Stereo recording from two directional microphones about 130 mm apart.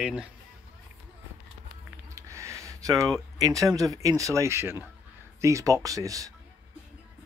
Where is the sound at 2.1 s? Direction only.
25° right (ahead or behind).